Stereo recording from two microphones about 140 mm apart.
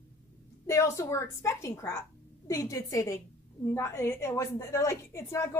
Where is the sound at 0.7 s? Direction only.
20° left (ahead or behind).